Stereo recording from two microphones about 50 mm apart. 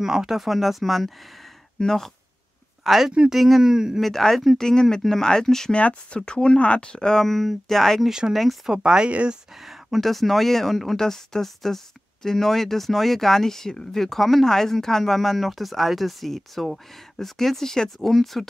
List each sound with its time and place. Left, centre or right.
0.0 s speech: centre
2.8 s speech: centre
4.0 s speech: centre
5.7 s speech: left; by 8.5 s centre
8.6 s speech: centre
9.1 s speech: right
9.7 s speech: centre